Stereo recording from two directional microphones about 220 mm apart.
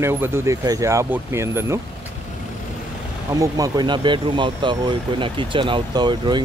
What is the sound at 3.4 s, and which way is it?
Speech, 15° right (ahead or behind).